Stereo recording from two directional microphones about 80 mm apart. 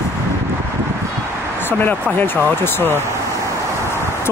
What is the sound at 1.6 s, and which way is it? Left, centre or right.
Speech, left.